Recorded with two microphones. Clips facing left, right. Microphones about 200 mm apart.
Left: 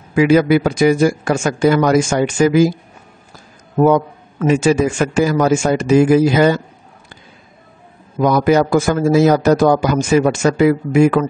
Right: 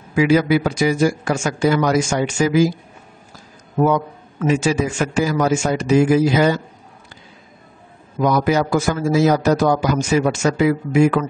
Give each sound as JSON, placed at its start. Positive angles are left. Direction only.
{"t": 0.1, "sound": "a man's voice", "side_deg": 55}
{"t": 3.8, "sound": "a man's voice", "side_deg": 50}
{"t": 8.2, "sound": "a man's voice", "side_deg": 55}